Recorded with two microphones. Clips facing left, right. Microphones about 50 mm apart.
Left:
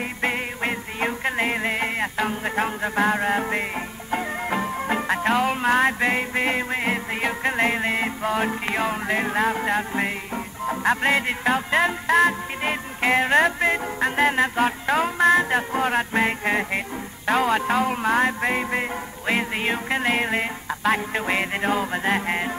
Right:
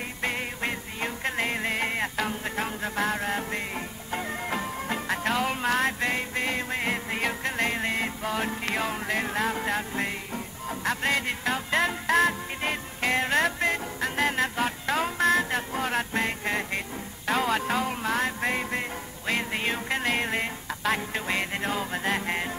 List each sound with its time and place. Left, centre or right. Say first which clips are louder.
0.2 s music: left 4 dB; centre
3.3 s music: left 6 dB; left
10.3 s music: left 7 dB; left